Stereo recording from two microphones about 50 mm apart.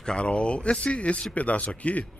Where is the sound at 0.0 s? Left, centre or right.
Left.